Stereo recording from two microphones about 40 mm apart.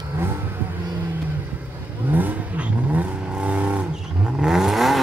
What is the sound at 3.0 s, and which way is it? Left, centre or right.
Vehicle, right.